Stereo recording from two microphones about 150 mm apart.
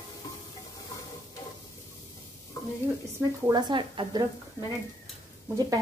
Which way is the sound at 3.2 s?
25° right (ahead or behind).